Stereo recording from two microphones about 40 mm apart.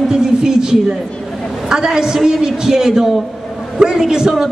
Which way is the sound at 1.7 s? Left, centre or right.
Centre.